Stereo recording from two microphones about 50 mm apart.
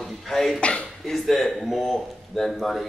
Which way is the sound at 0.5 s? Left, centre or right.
Left.